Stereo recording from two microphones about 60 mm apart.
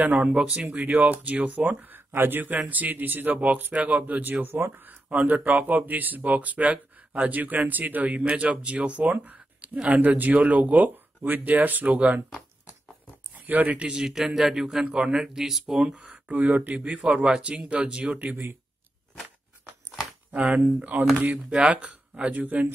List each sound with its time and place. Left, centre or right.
0.1 s speech: centre; by 4.7 s right
5.1 s speech: right
13.5 s speech: right
14.0 s speech: centre
16.3 s speech: right
18.3 s speech: right
20.2 s speech: right
21.5 s speech: centre